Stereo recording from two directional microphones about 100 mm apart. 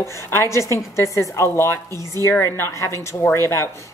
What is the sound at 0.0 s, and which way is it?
A woman's voice, 30° left (ahead or behind).